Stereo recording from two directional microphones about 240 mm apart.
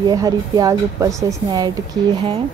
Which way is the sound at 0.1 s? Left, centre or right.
Centre.